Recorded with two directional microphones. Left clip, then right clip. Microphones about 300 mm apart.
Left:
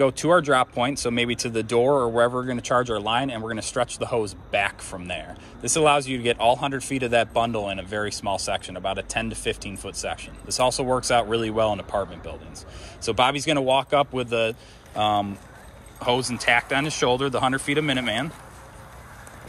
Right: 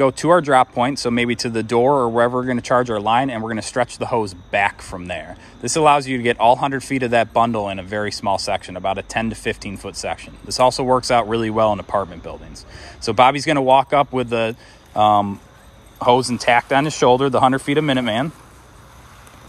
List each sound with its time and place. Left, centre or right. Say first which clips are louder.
0.0 s speech: right 4 dB; right